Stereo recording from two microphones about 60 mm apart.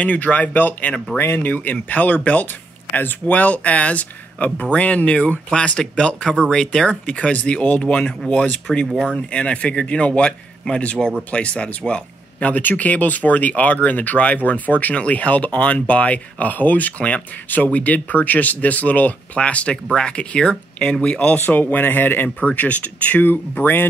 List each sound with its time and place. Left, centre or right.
0.0 s speech: left
1.1 s speech: left
1.4 s speech: left
21.5 s speech: left